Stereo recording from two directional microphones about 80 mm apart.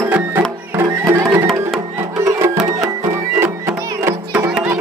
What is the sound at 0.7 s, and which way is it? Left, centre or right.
Music, right.